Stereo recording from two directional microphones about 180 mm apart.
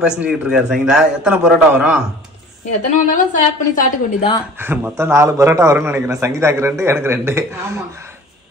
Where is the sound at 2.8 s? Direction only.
50° left (ahead or behind).